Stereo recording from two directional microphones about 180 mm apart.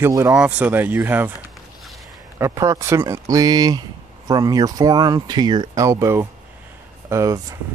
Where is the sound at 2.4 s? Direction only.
15° right (ahead or behind).